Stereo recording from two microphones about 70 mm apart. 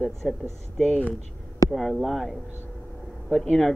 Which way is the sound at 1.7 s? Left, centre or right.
Centre.